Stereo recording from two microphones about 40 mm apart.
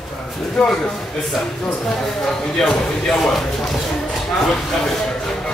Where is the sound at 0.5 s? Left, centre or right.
Centre.